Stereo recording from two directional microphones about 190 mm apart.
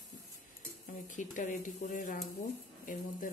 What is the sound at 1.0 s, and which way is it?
Speech, 40° left (ahead or behind).